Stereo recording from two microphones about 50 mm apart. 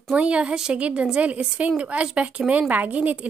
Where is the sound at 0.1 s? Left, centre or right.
Right.